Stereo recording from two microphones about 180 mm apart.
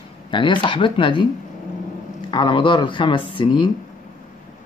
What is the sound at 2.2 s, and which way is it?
Speech, 25° left (ahead or behind).